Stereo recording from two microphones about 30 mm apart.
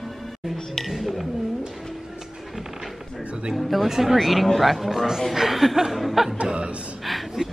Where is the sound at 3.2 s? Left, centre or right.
Right.